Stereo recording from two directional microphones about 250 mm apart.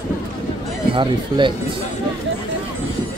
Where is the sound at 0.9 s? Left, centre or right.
Centre.